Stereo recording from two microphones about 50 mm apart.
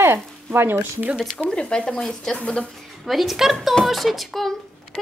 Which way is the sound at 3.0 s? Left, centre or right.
Centre.